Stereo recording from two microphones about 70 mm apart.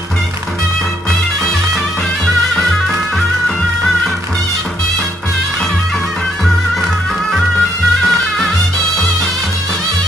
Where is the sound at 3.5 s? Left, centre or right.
Centre.